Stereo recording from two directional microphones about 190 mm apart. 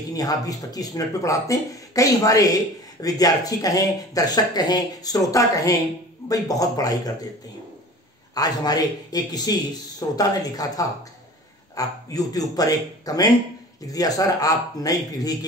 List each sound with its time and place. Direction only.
0.1 s speech: 20° left (ahead or behind)
8.4 s speech: 20° left (ahead or behind)